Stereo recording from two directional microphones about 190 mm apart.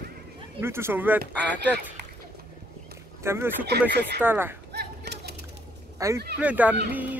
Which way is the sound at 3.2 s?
15° right (ahead or behind).